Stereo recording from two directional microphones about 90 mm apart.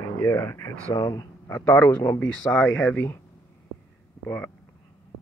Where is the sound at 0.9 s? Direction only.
45° left (ahead or behind).